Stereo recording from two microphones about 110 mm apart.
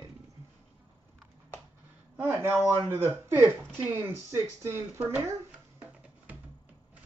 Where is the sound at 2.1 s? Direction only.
20° right (ahead or behind).